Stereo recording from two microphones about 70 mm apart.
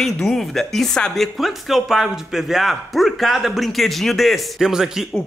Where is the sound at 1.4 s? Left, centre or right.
Centre.